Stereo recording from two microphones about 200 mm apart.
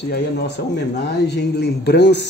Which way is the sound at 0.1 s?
55° left (ahead or behind).